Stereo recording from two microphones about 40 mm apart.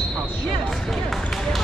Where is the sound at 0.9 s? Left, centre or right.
Centre.